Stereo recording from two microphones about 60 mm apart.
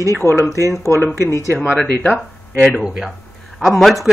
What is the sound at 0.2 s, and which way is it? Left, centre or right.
Speech, right.